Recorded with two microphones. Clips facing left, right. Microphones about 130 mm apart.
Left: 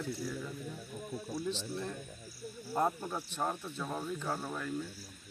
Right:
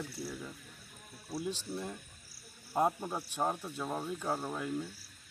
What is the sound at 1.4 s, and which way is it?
Speech, 10° right (ahead or behind).